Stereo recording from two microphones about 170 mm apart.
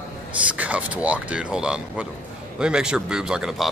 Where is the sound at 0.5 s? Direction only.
10° right (ahead or behind).